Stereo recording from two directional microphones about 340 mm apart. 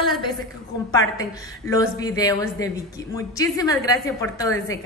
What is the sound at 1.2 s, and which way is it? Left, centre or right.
A woman's voice, centre.